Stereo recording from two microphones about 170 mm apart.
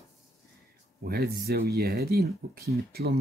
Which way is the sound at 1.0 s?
65° right (ahead or behind).